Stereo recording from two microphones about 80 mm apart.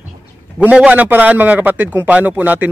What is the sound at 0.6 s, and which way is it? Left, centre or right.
A man's voice, centre.